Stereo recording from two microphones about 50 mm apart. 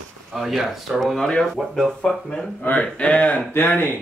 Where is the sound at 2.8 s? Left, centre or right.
Left.